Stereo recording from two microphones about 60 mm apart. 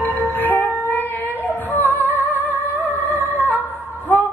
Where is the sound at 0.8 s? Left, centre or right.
Left.